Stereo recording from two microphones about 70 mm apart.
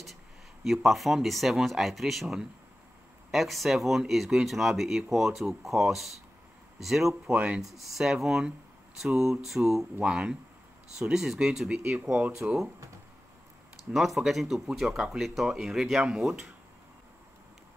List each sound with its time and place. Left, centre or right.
0.7 s speech: centre
7.3 s speech: centre
7.6 s speech: centre
13.9 s speech: centre